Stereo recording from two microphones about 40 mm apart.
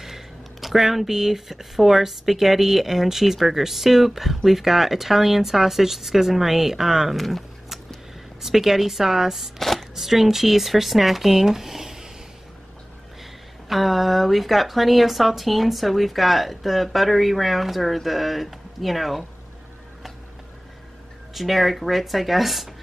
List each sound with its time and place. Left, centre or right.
0.0 s a woman's voice: centre
9.6 s shuffling cards: centre
9.9 s speech: centre
13.7 s speech: centre
21.4 s speech: centre